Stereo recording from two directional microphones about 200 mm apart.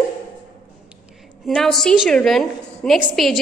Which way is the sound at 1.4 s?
Centre (ahead or behind).